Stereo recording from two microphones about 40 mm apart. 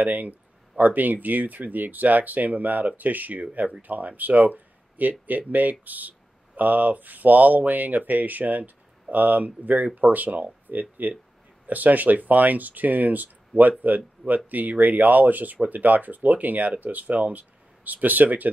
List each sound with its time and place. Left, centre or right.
0.0 s speech: right